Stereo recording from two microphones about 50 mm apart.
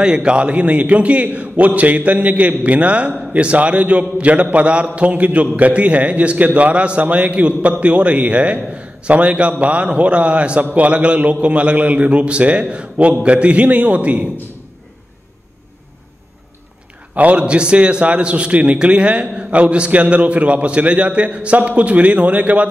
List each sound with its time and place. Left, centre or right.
0.0 s a man's voice: centre
17.1 s a man's voice: right